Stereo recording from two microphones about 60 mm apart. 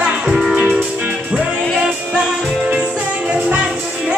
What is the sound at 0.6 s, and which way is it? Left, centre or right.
Music, centre.